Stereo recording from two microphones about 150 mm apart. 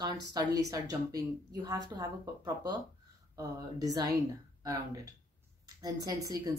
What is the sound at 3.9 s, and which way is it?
Speech, 25° right (ahead or behind).